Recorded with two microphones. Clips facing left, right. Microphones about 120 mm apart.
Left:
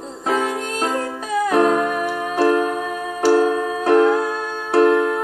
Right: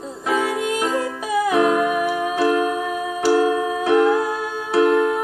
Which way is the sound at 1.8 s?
5° right (ahead or behind).